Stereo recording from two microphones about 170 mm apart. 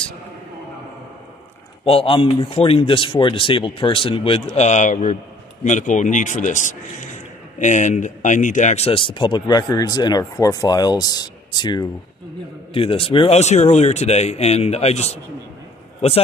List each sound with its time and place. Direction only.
1.9 s speech: 30° left (ahead or behind)
4.6 s a man's voice: 45° left (ahead or behind)